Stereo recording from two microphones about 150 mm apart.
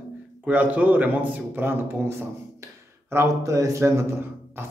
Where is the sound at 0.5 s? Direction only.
10° right (ahead or behind).